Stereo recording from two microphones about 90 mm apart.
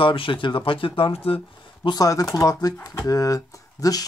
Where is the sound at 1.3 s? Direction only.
90° left.